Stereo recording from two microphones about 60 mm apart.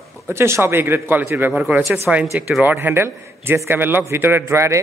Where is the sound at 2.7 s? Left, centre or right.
Right.